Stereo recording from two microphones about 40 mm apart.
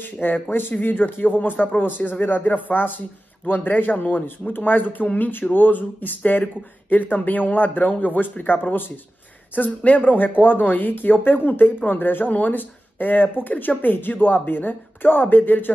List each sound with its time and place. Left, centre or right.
0.0 s speech: left
5.0 s speech: left
5.5 s speech: left
9.6 s speech: left